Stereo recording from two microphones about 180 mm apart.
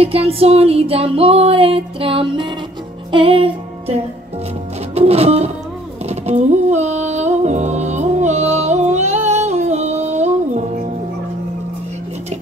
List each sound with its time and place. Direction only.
0.0 s music: 35° right (ahead or behind)